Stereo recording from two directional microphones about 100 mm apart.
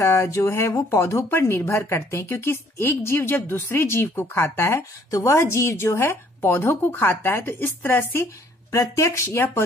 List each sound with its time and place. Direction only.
0.0 s speech: 30° left (ahead or behind)